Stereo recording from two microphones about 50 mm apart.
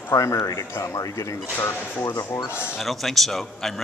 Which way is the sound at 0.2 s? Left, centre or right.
Left.